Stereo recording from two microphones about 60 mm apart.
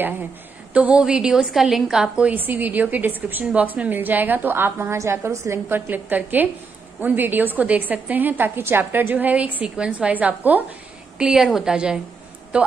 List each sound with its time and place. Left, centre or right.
0.7 s a woman's voice: centre
1.5 s a woman's voice: centre
2.2 s a woman's voice: right
5.7 s a woman's voice: right
11.1 s a woman's voice: centre